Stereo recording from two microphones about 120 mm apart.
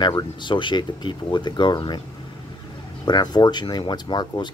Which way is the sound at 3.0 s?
35° left (ahead or behind).